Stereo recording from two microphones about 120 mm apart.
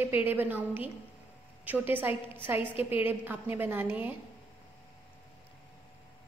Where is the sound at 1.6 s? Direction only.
15° right (ahead or behind).